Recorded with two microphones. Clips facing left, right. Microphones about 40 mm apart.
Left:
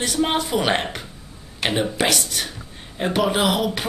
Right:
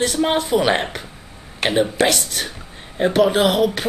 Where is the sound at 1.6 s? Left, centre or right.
Right.